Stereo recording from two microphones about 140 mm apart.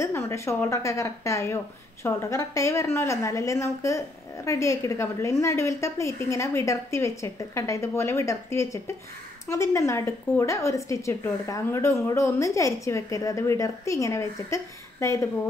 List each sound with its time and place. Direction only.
0.0 s a woman's voice: 20° left (ahead or behind)